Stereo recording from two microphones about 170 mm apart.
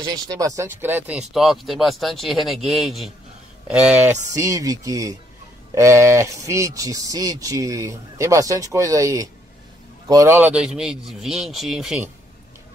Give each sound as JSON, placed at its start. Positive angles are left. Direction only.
{"t": 0.0, "sound": "speech", "side_deg": -25}
{"t": 4.3, "sound": "speech", "side_deg": -20}
{"t": 10.4, "sound": "speech", "side_deg": -5}